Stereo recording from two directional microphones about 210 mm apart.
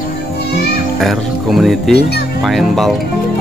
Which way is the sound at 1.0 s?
Centre (ahead or behind).